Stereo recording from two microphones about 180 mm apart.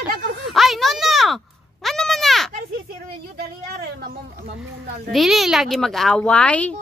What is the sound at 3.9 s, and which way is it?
Speech, 90° right.